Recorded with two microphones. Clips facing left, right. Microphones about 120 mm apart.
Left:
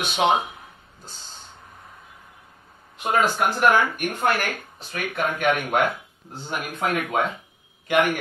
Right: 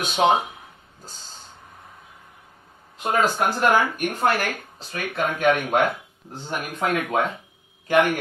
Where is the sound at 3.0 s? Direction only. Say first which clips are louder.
Even; 40° right (ahead or behind).